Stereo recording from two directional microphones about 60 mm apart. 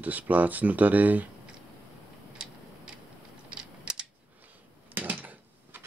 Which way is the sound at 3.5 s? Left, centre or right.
Centre.